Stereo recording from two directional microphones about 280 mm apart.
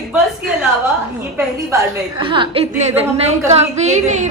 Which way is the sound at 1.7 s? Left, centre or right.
Centre.